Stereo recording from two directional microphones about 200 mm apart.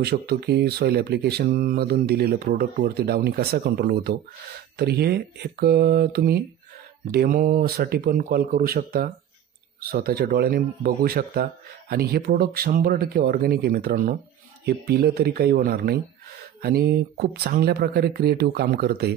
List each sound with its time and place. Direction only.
0.0 s speech: 50° right (ahead or behind)